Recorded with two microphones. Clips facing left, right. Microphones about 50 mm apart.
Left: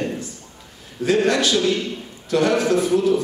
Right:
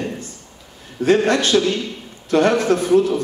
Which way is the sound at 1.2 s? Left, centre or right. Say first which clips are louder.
Right 2 dB; right.